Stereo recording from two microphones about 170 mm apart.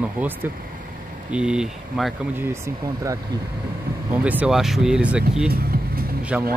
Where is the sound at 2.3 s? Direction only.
15° right (ahead or behind).